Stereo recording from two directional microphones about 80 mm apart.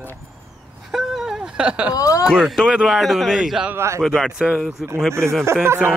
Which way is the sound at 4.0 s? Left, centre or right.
Centre.